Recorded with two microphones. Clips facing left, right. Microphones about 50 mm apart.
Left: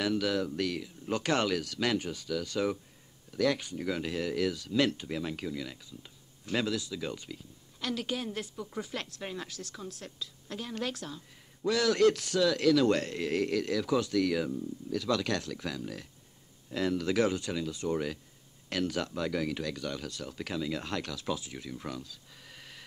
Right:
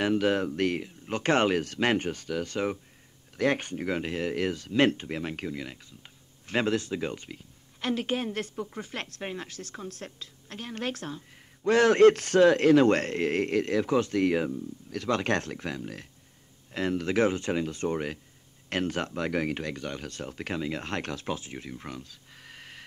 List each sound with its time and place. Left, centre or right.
0.0 s speech: right